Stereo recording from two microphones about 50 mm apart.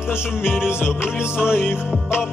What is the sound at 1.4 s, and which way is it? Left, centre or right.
Music, left.